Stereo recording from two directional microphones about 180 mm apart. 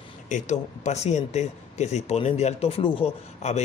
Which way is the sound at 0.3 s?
40° left (ahead or behind).